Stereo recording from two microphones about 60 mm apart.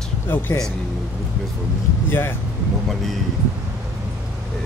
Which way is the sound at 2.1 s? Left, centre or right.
Left.